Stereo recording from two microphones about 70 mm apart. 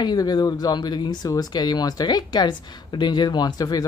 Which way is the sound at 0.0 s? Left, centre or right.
Left.